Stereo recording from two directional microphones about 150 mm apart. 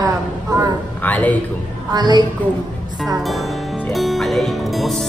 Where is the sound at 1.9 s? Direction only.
30° right (ahead or behind).